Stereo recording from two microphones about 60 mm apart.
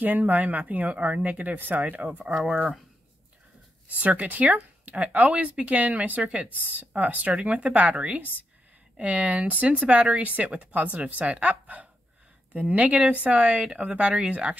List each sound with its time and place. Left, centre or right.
0.0 s speech: right
4.0 s speech: right